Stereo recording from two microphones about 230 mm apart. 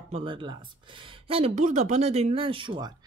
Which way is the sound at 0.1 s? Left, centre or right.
Right.